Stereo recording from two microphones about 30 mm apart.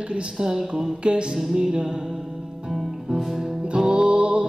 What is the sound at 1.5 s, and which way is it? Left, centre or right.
Speech, centre.